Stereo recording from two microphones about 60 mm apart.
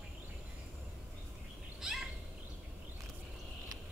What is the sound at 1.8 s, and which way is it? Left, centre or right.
Bird, centre.